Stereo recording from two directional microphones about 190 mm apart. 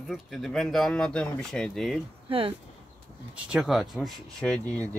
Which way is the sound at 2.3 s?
30° right (ahead or behind).